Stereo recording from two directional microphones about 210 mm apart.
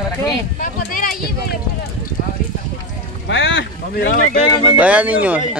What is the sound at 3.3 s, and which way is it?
Speech, 60° left (ahead or behind).